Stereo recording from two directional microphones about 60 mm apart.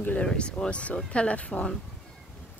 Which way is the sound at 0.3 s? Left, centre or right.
Centre.